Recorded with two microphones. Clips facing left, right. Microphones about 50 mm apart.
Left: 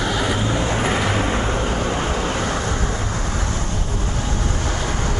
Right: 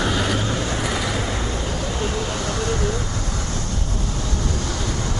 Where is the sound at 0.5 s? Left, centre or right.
Left.